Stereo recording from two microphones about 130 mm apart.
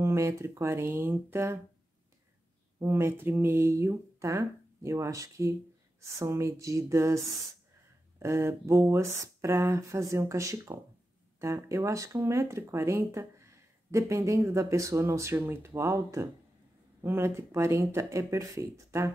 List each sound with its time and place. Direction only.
0.0 s speech: 20° right (ahead or behind)
2.8 s speech: 20° right (ahead or behind)
8.2 s speech: 20° right (ahead or behind)